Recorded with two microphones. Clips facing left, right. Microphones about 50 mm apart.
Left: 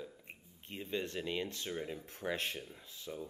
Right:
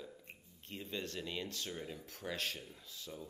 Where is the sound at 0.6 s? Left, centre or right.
Left.